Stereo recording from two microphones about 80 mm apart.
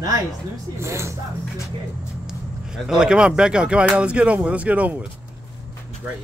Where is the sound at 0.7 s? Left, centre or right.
Right.